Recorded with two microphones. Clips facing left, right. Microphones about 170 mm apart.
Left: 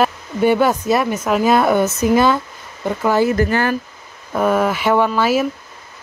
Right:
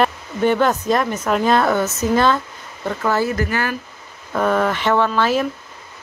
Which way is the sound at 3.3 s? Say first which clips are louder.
Left 5 dB; 30° left (ahead or behind).